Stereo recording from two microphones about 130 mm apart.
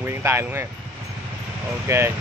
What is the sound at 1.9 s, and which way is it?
Speech, 25° right (ahead or behind).